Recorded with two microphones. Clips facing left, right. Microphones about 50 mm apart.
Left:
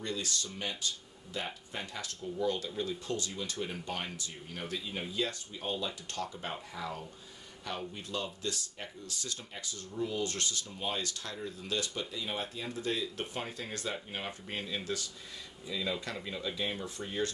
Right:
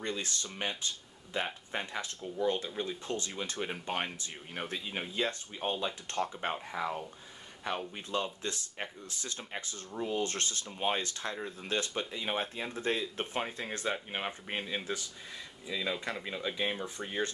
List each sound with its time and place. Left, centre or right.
0.0 s speech: right